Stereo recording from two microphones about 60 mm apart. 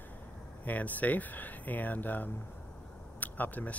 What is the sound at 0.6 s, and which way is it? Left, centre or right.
Speech, left.